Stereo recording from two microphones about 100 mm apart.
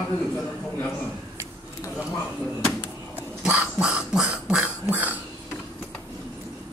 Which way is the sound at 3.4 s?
10° right (ahead or behind).